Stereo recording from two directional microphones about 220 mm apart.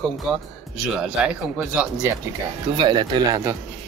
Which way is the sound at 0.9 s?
5° right (ahead or behind).